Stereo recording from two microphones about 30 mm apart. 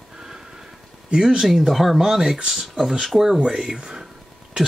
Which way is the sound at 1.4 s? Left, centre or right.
Centre.